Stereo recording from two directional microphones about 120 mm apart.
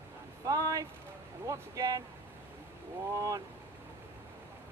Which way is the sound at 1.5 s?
30° right (ahead or behind).